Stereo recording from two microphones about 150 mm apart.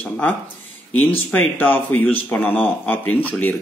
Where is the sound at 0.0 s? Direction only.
10° left (ahead or behind).